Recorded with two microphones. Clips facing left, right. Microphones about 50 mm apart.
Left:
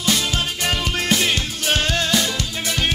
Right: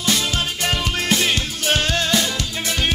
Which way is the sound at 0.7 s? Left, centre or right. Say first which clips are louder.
Even; centre.